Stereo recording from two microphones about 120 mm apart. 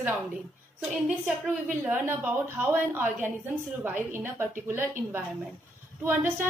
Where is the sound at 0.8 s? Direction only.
10° right (ahead or behind).